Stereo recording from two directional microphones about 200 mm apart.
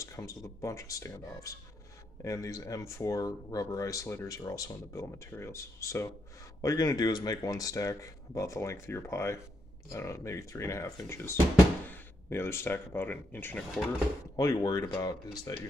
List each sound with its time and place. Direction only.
0.0 s speech: 15° left (ahead or behind)
14.3 s speech: 20° left (ahead or behind)